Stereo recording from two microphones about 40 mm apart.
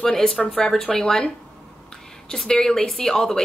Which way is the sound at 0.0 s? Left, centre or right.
Centre.